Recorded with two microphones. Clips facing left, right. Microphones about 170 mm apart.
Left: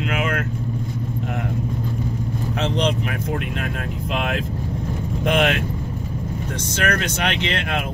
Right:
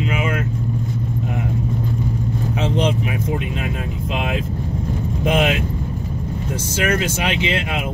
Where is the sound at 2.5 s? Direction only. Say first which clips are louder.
Right 1 dB; 5° right (ahead or behind).